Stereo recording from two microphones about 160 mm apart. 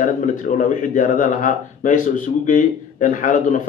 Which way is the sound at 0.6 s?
55° left (ahead or behind).